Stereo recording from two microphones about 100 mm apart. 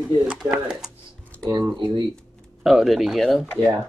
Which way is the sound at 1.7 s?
50° right (ahead or behind).